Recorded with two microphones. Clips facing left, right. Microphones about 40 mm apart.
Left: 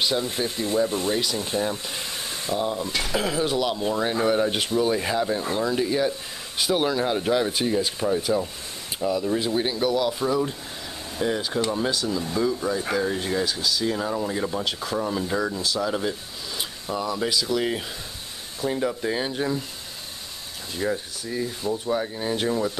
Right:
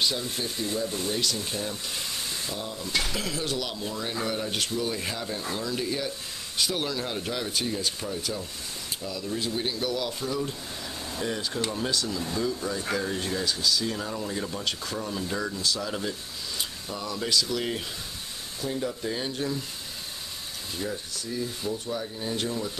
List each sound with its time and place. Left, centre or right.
0.0 s speech: left
11.1 s speech: centre
18.7 s speech: left
20.8 s speech: left